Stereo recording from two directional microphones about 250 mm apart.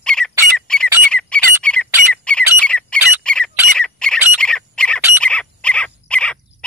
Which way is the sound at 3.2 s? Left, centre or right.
Centre.